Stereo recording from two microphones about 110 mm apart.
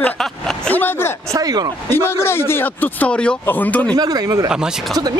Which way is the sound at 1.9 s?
20° left (ahead or behind).